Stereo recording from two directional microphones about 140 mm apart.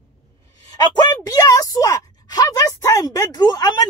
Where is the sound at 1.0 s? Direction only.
25° left (ahead or behind).